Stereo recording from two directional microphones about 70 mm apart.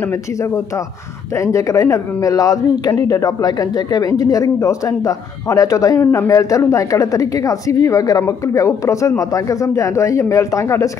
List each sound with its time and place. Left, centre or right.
0.1 s speech: left